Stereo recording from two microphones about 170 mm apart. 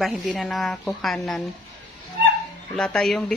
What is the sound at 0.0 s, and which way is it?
Speech, centre (ahead or behind).